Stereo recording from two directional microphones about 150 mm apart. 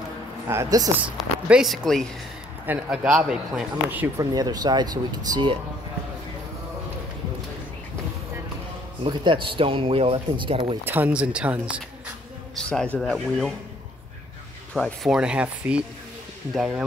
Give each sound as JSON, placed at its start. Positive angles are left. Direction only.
{"t": 0.5, "sound": "speech", "side_deg": -20}
{"t": 1.0, "sound": "speech", "side_deg": -5}
{"t": 2.6, "sound": "speech", "side_deg": -10}
{"t": 4.2, "sound": "speech", "side_deg": -25}
{"t": 9.0, "sound": "speech", "side_deg": -30}
{"t": 10.9, "sound": "speech", "side_deg": -10}
{"t": 12.5, "sound": "a man's voice", "side_deg": 5}
{"t": 14.7, "sound": "speech", "side_deg": 5}
{"t": 15.0, "sound": "speech", "side_deg": -5}